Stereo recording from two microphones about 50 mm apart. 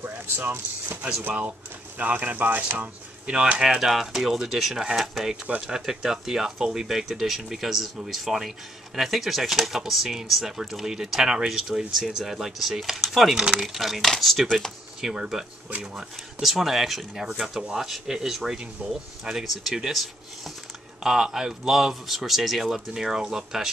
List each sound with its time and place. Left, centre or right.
0.0 s speech: right
2.0 s speech: right
3.3 s speech: right
3.6 s speech: centre
15.0 s speech: centre
18.8 s speech: right
19.4 s speech: centre
21.0 s speech: centre